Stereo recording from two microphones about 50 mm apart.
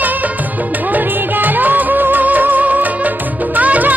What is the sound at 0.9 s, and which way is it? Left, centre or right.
Music, right.